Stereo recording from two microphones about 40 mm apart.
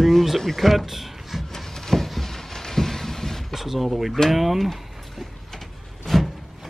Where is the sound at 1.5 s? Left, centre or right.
Centre.